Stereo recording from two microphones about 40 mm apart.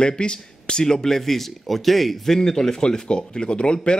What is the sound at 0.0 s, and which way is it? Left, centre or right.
Speech, left.